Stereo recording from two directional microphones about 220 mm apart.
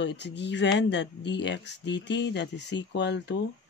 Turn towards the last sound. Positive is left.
turn(degrees=50)  # may be behind; listen again after turning